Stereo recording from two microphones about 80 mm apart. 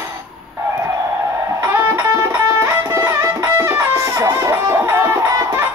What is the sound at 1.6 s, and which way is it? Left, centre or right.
Music, right.